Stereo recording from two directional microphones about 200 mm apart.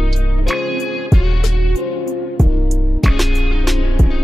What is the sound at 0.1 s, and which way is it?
Music, centre (ahead or behind).